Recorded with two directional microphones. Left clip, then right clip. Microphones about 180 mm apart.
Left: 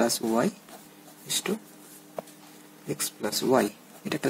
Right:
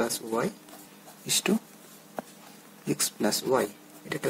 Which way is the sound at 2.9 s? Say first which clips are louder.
Right 3 dB; 30° right (ahead or behind).